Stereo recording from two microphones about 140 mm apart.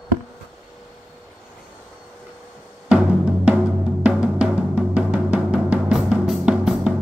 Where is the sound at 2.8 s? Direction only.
10° right (ahead or behind).